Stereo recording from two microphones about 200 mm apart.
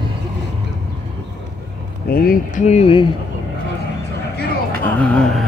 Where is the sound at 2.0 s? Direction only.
45° left (ahead or behind); by 3.1 s 30° left (ahead or behind).